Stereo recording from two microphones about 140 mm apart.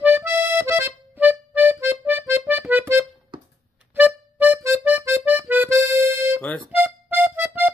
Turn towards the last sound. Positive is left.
turn(degrees=-15)  # may be behind; listen again after turning